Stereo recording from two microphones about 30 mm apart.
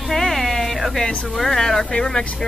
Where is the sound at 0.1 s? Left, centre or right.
Centre.